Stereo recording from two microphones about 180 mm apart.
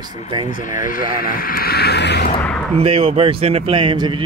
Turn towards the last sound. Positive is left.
turn(degrees=-25)  # may be behind; listen again after turning